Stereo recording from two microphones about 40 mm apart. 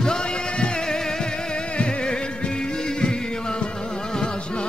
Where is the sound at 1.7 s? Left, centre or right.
Left.